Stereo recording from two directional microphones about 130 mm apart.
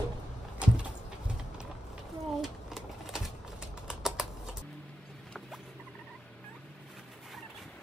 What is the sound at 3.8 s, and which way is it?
Typing, 5° right (ahead or behind).